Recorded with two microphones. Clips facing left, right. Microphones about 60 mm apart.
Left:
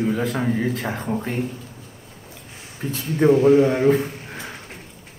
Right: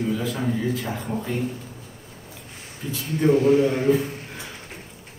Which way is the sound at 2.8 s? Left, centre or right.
Left.